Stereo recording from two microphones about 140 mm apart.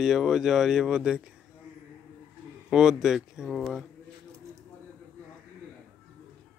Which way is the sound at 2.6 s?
5° right (ahead or behind).